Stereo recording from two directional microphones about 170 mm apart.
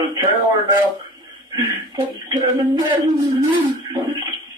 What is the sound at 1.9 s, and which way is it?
Speech, 25° right (ahead or behind).